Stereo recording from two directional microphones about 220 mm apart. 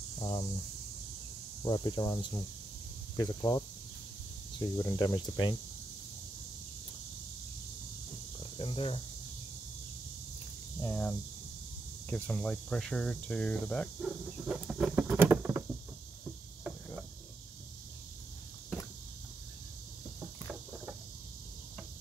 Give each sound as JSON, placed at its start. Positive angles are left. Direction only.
{"t": 0.2, "sound": "speech", "side_deg": 20}
{"t": 1.6, "sound": "speech", "side_deg": 20}
{"t": 3.2, "sound": "speech", "side_deg": 20}
{"t": 8.5, "sound": "speech", "side_deg": 25}
{"t": 10.8, "sound": "speech", "side_deg": 10}